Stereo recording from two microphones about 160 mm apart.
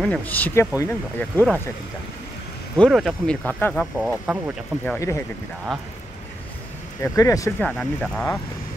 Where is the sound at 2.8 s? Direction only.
5° right (ahead or behind).